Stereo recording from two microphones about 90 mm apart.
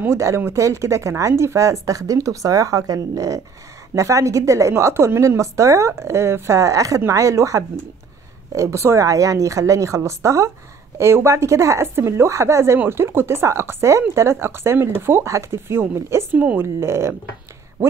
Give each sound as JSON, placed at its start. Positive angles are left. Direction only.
{"t": 0.0, "sound": "speech", "side_deg": -30}
{"t": 16.3, "sound": "speech", "side_deg": -15}
{"t": 16.6, "sound": "speech", "side_deg": -30}